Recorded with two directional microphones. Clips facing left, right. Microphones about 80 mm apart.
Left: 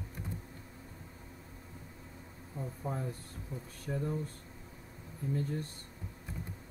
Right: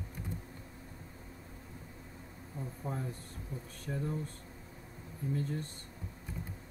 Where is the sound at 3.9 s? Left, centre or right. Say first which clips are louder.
Left 2 dB; centre.